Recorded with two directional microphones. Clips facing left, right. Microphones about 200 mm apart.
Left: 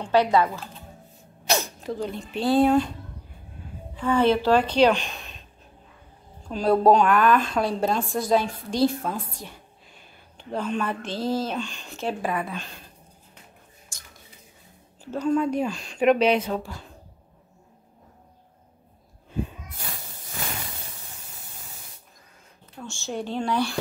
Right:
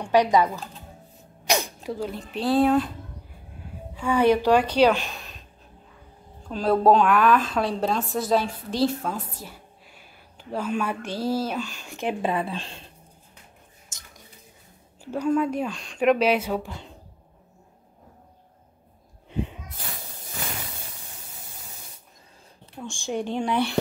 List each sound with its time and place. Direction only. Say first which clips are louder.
0.0 s a woman's voice: right 1 dB; 15° right (ahead or behind)
4.1 s a woman's voice: right 1 dB; 15° right (ahead or behind)
6.4 s a woman's voice: left 1 dB; centre (ahead or behind); by 12.8 s 30° right (ahead or behind)
13.9 s squish: even; 20° right (ahead or behind)
15.0 s speech: even; 10° right (ahead or behind)
22.8 s a woman's voice: right 2 dB; 15° right (ahead or behind)